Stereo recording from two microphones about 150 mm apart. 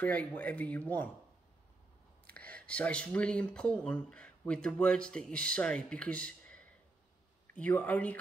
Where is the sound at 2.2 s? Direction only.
10° left (ahead or behind).